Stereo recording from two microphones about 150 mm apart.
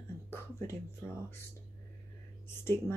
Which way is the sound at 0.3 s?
15° left (ahead or behind).